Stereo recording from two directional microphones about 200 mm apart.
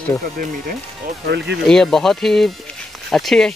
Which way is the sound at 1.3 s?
55° right (ahead or behind).